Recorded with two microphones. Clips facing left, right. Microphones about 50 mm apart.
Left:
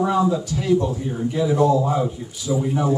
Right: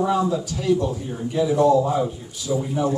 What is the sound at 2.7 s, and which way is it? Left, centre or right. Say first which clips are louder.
Speech: left 2 dB; left.